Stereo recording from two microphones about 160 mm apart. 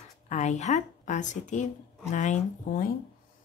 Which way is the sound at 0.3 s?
45° left (ahead or behind).